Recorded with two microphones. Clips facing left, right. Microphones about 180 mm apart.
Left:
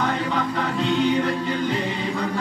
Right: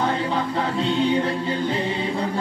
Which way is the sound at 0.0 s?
30° right (ahead or behind).